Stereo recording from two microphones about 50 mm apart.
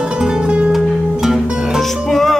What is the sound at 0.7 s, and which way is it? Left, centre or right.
Music, centre.